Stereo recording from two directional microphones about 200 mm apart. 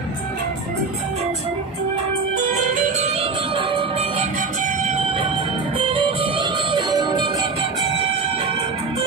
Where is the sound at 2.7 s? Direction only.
35° right (ahead or behind).